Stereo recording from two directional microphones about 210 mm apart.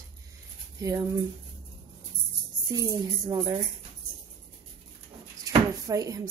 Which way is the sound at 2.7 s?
15° right (ahead or behind).